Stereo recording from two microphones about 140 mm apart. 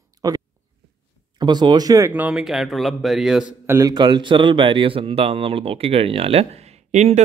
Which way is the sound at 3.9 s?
35° right (ahead or behind).